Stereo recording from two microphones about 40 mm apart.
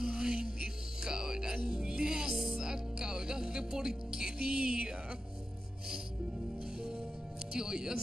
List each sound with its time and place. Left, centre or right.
0.0 s music: right
2.3 s music: centre
2.6 s music: centre
7.5 s speech: centre